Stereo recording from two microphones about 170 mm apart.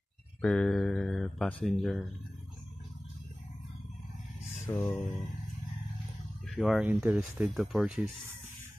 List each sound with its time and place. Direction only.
0.4 s speech: 5° left (ahead or behind)
4.6 s music: 15° left (ahead or behind)
6.5 s speech: 5° right (ahead or behind)